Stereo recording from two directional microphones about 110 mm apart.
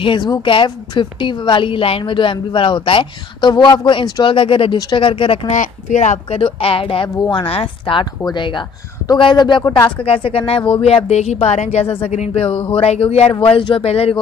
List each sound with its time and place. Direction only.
0.0 s a woman's voice: 45° left (ahead or behind)
4.7 s speech: 35° left (ahead or behind)
5.0 s a woman's voice: 50° left (ahead or behind)
5.5 s a child's voice: 90° left
6.4 s a woman's voice: 55° left (ahead or behind)
10.0 s speech: 55° left (ahead or behind)
10.8 s speech: 75° left (ahead or behind)